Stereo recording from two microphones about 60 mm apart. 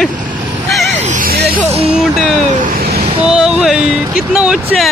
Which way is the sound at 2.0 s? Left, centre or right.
Centre.